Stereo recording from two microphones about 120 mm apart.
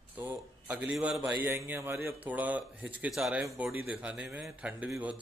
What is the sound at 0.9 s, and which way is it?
Speech, 5° right (ahead or behind).